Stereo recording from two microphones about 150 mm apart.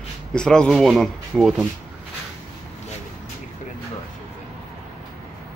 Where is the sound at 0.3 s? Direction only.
5° left (ahead or behind).